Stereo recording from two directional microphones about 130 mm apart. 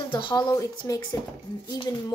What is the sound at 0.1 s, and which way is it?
Speech, 40° left (ahead or behind).